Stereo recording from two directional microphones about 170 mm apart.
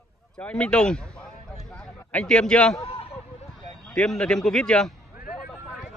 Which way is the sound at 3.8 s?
5° left (ahead or behind).